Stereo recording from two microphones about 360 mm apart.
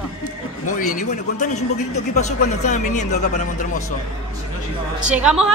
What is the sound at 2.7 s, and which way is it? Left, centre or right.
Speech, centre.